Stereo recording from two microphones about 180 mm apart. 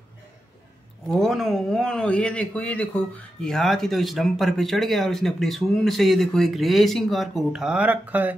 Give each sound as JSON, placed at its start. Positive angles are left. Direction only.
{"t": 1.0, "sound": "a man's voice", "side_deg": 0}